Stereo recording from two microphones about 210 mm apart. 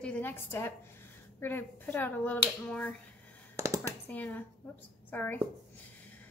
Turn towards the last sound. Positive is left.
turn(degrees=10)  # may be behind; listen again after turning